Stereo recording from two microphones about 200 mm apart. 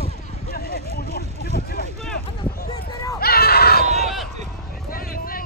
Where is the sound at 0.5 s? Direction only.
50° left (ahead or behind).